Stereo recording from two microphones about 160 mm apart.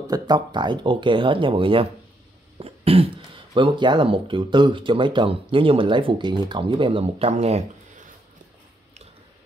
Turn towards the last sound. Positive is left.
turn(degrees=-40)  # may be behind; listen again after turning